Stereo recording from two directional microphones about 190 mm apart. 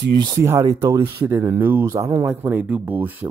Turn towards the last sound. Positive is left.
turn(degrees=-10)  # may be behind; listen again after turning